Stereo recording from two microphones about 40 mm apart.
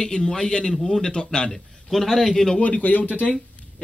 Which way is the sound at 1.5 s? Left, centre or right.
Centre.